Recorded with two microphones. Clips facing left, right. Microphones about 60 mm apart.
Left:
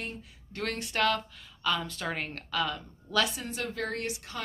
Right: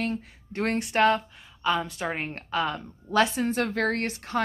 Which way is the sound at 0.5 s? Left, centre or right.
Right.